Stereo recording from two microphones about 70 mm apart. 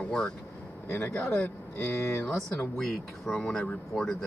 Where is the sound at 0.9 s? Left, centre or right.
Left.